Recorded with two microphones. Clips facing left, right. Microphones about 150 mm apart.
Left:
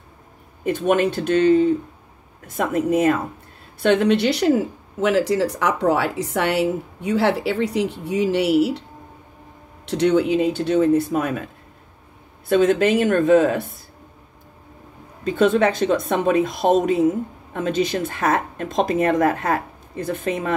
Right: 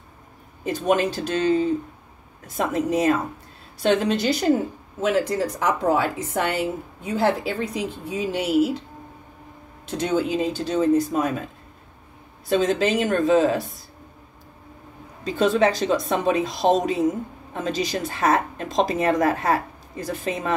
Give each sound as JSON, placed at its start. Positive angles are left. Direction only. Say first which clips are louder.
{"t": 0.7, "sound": "speech", "louder": "left 3 dB", "side_deg": 60}
{"t": 9.8, "sound": "speech", "louder": "left 5 dB", "side_deg": 65}
{"t": 12.4, "sound": "speech", "louder": "left 4 dB", "side_deg": 60}
{"t": 15.2, "sound": "speech", "louder": "left 2 dB", "side_deg": 55}